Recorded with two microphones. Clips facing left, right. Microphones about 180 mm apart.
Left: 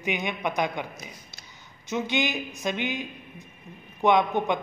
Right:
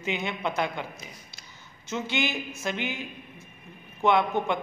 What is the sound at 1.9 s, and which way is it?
A woman's voice, 15° left (ahead or behind).